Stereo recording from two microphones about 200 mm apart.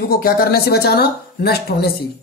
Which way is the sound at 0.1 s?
50° left (ahead or behind).